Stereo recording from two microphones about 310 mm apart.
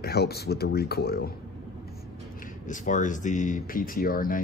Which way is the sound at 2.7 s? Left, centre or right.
Left.